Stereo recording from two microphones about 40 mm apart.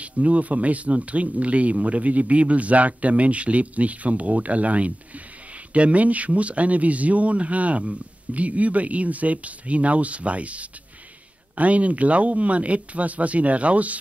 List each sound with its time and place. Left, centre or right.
0.0 s speech: right